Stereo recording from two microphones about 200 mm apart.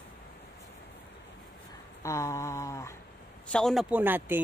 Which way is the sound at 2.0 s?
15° left (ahead or behind).